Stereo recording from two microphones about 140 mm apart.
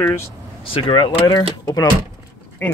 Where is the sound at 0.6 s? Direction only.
40° left (ahead or behind).